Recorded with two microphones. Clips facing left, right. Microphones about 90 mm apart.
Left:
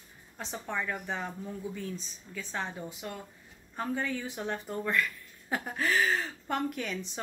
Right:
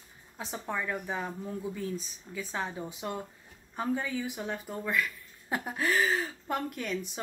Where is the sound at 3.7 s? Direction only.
10° right (ahead or behind).